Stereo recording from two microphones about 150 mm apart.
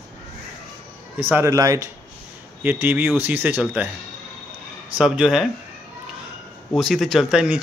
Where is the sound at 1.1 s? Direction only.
15° right (ahead or behind).